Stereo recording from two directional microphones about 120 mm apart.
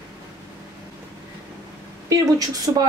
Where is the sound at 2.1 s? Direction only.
30° right (ahead or behind).